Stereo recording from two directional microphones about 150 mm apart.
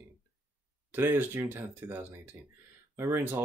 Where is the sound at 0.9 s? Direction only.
15° right (ahead or behind).